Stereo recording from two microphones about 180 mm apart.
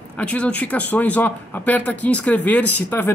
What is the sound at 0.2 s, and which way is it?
Speech, 5° left (ahead or behind).